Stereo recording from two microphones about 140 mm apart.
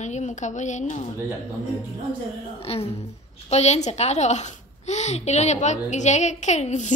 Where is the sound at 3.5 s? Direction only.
50° left (ahead or behind).